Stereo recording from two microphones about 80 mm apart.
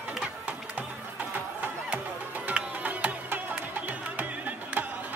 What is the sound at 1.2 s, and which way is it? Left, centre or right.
Music, centre.